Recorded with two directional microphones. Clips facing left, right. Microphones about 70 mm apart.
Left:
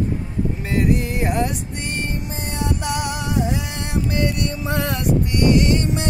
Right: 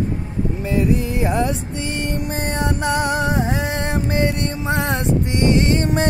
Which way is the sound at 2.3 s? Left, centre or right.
Right.